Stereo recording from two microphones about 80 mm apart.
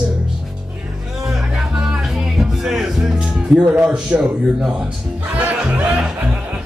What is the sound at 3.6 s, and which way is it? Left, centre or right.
A man's voice, centre.